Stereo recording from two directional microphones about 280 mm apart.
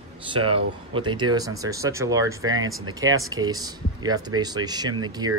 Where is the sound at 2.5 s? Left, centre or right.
Right.